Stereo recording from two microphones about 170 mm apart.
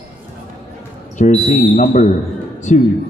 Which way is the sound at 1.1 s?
45° left (ahead or behind).